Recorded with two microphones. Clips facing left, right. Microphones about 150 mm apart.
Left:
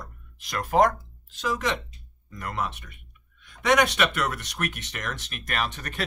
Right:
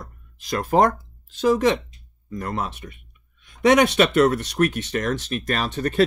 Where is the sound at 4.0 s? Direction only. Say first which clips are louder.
Right 9 dB; 30° right (ahead or behind).